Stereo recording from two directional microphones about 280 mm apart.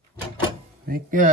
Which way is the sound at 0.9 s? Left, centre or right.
Right.